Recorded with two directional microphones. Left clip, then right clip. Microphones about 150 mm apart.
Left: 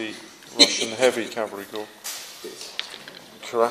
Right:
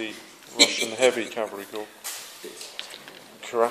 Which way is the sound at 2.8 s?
45° right (ahead or behind).